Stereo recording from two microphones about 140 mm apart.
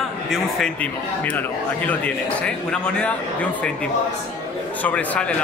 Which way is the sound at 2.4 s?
5° left (ahead or behind).